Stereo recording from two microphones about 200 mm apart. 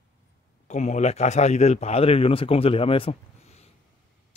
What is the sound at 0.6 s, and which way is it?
A man's voice, 35° left (ahead or behind).